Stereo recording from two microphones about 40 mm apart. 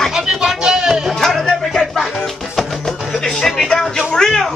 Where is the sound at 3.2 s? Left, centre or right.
Centre.